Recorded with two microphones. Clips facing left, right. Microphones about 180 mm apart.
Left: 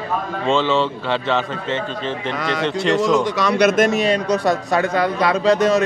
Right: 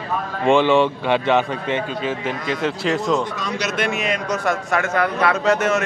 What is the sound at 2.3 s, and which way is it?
Speech, 80° left.